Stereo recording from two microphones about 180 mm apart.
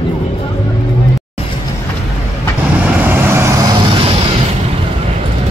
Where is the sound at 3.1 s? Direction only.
15° right (ahead or behind).